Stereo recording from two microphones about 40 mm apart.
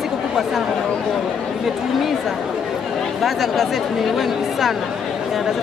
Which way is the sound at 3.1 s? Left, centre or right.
Centre.